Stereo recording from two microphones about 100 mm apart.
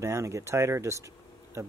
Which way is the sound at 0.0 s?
30° right (ahead or behind).